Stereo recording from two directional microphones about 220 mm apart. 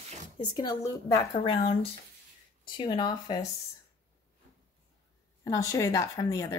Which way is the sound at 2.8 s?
20° left (ahead or behind).